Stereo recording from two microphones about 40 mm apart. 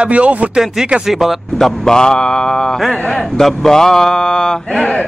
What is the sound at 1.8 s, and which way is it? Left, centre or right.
Speech, centre.